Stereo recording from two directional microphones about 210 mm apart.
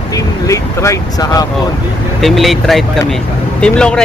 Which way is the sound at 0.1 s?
15° left (ahead or behind).